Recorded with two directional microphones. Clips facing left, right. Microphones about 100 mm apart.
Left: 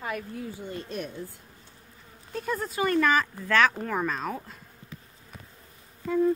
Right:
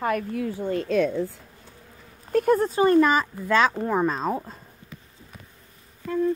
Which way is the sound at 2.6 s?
35° right (ahead or behind).